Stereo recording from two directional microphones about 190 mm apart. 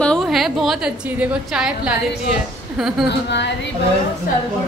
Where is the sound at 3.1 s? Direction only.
65° left (ahead or behind).